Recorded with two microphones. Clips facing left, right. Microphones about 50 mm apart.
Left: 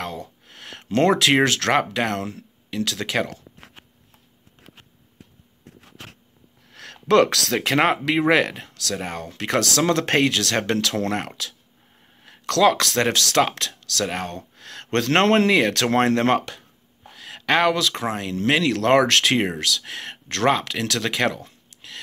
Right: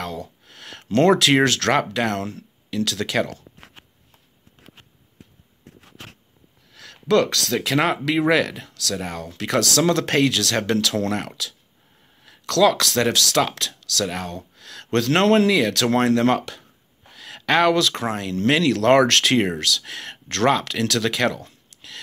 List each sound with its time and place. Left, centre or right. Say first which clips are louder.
0.0 s speech: right 1 dB; left
6.7 s speech: left 1 dB; left
7.7 s speech: left 1 dB; left
16.5 s speech: right 1 dB; centre